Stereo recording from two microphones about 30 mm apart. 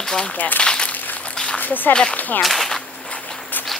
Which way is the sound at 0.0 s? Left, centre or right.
Left.